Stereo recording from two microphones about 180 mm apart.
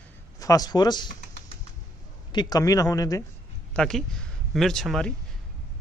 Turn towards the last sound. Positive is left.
turn(degrees=0)  # may be behind; listen again after turning